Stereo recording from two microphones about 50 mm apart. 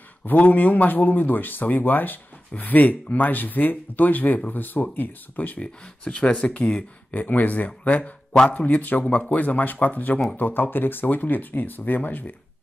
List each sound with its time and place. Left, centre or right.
0.2 s speech: left
5.6 s speech: left
9.0 s speech: centre
9.3 s speech: left